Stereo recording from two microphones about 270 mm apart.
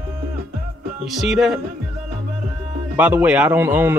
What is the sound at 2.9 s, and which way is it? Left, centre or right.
A man's voice, centre.